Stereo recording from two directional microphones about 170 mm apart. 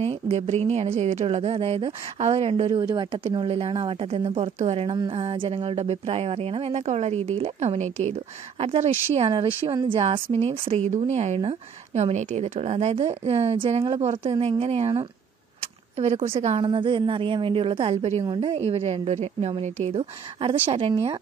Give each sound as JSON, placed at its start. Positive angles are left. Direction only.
{"t": 0.0, "sound": "speech", "side_deg": -35}
{"t": 2.6, "sound": "speech", "side_deg": -25}
{"t": 9.5, "sound": "a woman's voice", "side_deg": -25}
{"t": 16.0, "sound": "speech", "side_deg": -35}